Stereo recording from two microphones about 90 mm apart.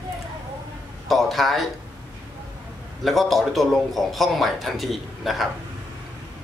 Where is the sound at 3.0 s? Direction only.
Centre (ahead or behind).